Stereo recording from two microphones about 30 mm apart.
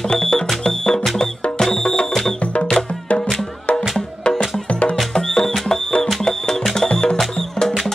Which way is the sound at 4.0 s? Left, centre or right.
Left.